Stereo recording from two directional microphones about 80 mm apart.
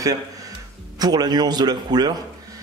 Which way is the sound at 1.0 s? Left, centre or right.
Right.